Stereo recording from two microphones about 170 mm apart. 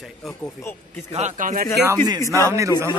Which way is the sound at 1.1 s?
45° right (ahead or behind).